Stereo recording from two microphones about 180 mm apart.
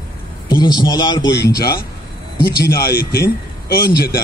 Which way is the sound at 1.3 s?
65° left (ahead or behind).